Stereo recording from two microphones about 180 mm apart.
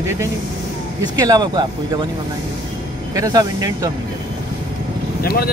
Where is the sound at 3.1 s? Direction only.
20° right (ahead or behind).